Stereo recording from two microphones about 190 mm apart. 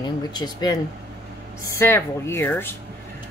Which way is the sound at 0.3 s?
20° left (ahead or behind).